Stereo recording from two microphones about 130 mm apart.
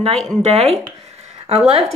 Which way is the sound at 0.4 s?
55° right (ahead or behind).